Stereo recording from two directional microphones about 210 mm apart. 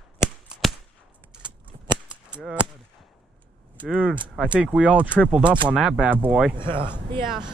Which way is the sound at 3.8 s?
5° right (ahead or behind).